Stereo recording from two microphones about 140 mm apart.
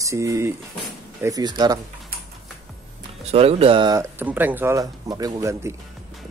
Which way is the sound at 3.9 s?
15° right (ahead or behind).